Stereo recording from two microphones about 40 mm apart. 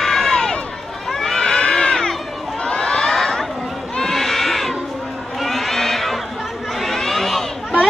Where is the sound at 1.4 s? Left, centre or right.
Left; by 4.7 s centre.